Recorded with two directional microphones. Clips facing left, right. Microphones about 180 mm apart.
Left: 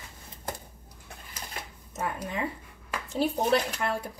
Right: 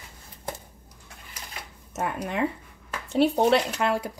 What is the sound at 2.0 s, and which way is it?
A woman's voice, 70° right (ahead or behind).